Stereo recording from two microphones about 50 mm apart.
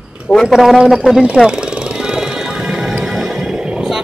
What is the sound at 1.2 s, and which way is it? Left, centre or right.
Speech, right.